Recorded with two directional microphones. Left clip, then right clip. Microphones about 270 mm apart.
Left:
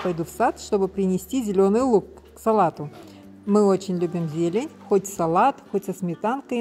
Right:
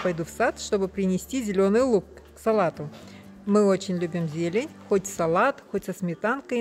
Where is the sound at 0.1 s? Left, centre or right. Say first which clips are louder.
Left 2 dB; centre.